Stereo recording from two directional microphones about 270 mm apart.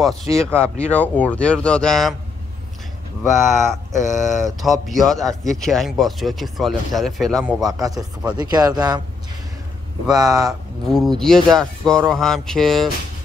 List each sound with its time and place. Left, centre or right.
0.4 s speech: centre
3.5 s speech: left
4.6 s speech: centre
7.6 s speech: centre
10.0 s speech: centre
10.9 s speech: centre